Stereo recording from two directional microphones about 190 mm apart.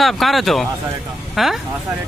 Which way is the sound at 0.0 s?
Centre (ahead or behind).